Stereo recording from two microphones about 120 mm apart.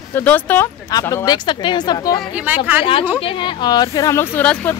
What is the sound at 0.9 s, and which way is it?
Speech, 30° left (ahead or behind).